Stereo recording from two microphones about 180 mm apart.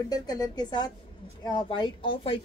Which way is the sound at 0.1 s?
20° left (ahead or behind).